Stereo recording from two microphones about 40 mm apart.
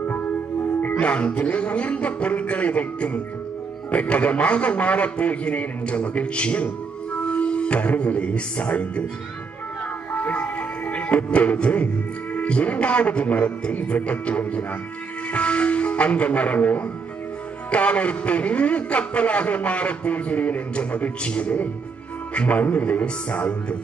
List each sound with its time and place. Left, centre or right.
0.9 s a man's voice: left
10.1 s music: left
12.4 s a man's voice: left